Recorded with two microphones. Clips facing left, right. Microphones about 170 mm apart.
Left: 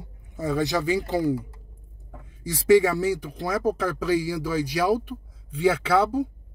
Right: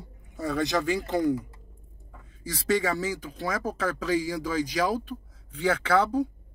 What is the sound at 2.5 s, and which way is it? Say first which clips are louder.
Speech: left 8 dB; 10° left (ahead or behind).